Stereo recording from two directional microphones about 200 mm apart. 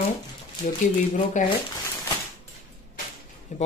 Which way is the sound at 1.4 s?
40° left (ahead or behind).